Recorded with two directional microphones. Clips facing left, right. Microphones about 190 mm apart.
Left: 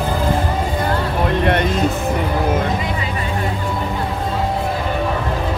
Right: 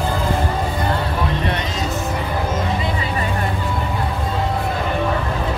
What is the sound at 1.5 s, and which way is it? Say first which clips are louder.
Music: left 7 dB; 55° left (ahead or behind).